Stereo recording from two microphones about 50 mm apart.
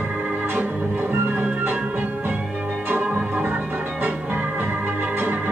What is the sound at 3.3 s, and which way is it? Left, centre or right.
Music, right.